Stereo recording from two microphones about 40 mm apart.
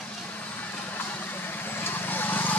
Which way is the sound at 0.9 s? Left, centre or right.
Left.